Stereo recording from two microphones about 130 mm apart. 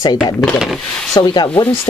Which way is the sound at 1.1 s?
30° left (ahead or behind).